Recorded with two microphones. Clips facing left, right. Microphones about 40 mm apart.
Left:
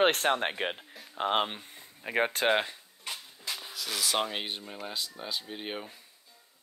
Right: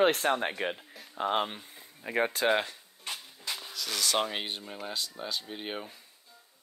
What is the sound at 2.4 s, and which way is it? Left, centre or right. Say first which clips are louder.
Speech: even; left.